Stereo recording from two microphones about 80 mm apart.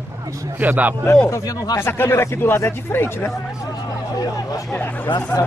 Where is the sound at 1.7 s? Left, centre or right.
Left.